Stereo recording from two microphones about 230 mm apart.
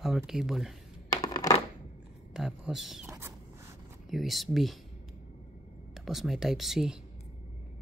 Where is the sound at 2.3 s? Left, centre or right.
Centre.